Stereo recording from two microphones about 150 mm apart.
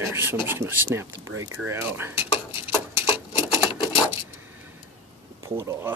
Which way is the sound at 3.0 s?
15° right (ahead or behind).